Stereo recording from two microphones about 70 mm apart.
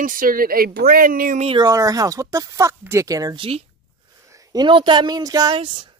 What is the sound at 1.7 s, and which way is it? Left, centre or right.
Speech, right.